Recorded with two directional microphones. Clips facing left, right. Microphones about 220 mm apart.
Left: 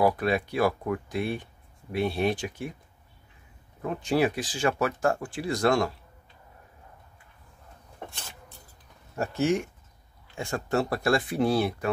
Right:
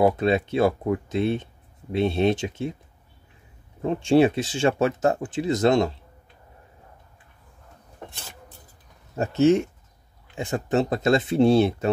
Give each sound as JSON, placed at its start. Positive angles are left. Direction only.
{"t": 0.0, "sound": "speech", "side_deg": -25}
{"t": 3.8, "sound": "speech", "side_deg": -25}
{"t": 9.1, "sound": "speech", "side_deg": -20}